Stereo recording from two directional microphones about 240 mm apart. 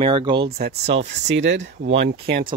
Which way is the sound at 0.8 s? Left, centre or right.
Right.